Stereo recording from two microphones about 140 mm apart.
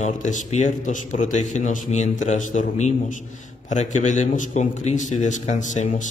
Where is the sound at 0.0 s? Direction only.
60° left (ahead or behind).